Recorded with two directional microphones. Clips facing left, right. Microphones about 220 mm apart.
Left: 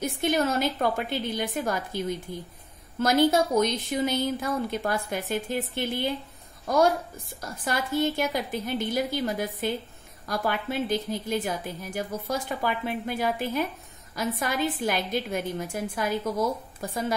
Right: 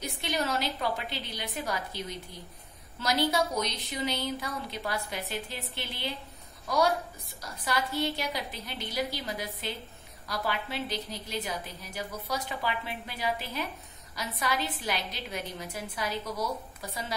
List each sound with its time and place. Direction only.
0.0 s a woman's voice: 50° left (ahead or behind)